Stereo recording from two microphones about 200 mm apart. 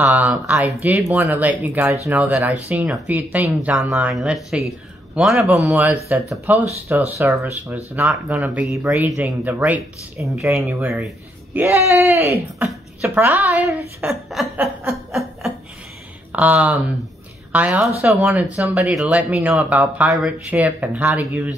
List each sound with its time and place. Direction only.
0.0 s a woman's voice: 10° right (ahead or behind)
14.9 s snicker: centre (ahead or behind)
16.3 s a woman's voice: 5° right (ahead or behind)